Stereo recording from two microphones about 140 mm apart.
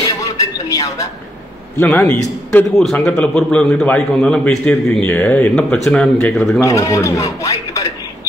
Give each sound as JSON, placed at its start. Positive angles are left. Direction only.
{"t": 0.2, "sound": "a sound", "side_deg": 25}
{"t": 1.8, "sound": "a man's voice", "side_deg": 10}
{"t": 6.6, "sound": "a man's voice", "side_deg": 20}